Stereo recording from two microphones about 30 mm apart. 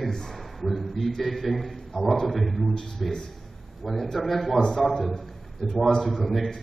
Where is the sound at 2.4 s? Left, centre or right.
Centre.